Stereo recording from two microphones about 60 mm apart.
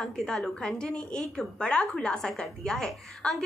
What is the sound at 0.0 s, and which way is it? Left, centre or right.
A woman's voice, centre.